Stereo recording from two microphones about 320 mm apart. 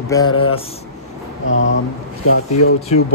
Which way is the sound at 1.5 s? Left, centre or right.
Left.